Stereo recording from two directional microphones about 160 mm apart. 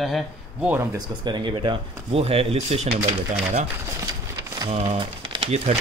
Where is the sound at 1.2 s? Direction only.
30° right (ahead or behind).